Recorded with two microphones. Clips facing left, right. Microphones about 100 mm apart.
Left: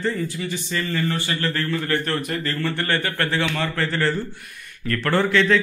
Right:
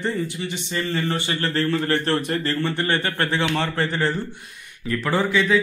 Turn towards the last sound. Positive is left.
turn(degrees=-10)  # may be behind; listen again after turning